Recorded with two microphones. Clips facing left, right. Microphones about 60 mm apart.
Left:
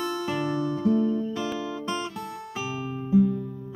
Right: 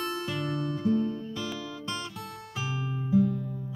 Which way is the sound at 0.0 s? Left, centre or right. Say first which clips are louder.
Left 4 dB; centre.